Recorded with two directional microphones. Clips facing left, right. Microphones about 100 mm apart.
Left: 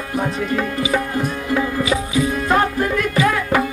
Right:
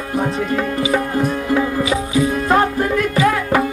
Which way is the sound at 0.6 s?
35° right (ahead or behind).